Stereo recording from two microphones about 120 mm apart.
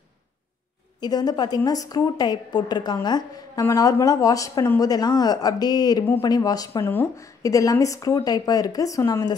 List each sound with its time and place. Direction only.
1.0 s a woman's voice: 35° left (ahead or behind)